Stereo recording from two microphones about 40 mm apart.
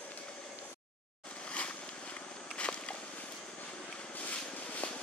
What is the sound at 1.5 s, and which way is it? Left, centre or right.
Vehicle, left.